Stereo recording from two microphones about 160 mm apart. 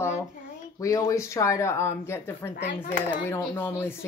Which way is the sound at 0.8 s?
20° left (ahead or behind).